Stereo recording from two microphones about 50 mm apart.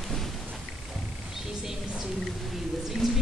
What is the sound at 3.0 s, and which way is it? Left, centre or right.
Music, centre.